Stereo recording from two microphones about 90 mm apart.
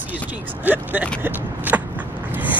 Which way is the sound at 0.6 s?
20° right (ahead or behind).